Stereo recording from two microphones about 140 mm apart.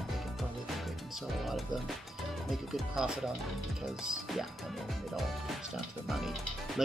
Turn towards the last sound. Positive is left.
turn(degrees=0)  # may be behind; listen again after turning